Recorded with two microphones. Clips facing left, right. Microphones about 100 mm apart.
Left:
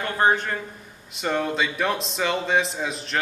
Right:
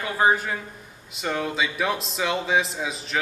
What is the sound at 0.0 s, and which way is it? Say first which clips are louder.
A man's voice: even; 5° right (ahead or behind).